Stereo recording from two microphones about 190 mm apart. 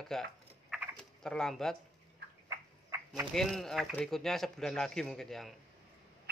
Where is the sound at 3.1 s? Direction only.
Centre (ahead or behind).